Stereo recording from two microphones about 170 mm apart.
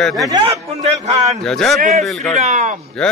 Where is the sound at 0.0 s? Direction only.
Centre (ahead or behind).